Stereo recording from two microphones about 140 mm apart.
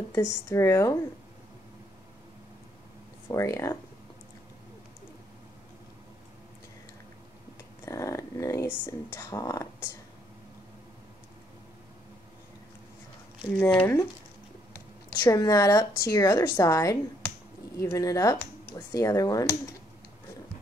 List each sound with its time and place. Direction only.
0.1 s speech: 20° left (ahead or behind)
3.3 s speech: 25° left (ahead or behind)
7.8 s speech: 25° left (ahead or behind)
13.6 s speech: 10° left (ahead or behind)
15.2 s speech: 25° left (ahead or behind)